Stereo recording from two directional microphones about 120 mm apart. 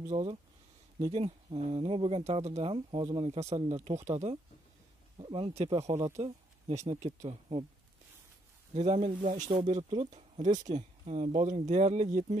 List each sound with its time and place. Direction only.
0.0 s speech: 60° right (ahead or behind)
2.7 s speech: 45° right (ahead or behind)
3.3 s speech: 65° right (ahead or behind)
5.1 s speech: 45° right (ahead or behind)
5.7 s speech: 55° right (ahead or behind)
7.2 s speech: 50° right (ahead or behind)
8.7 s speech: 70° right (ahead or behind)